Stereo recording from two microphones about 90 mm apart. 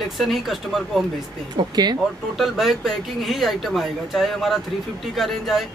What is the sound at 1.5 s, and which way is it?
Speech, 50° right (ahead or behind).